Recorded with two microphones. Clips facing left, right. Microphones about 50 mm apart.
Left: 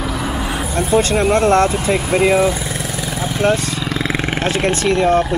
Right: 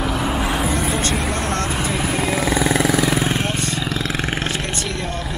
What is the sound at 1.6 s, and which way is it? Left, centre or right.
Speech, left.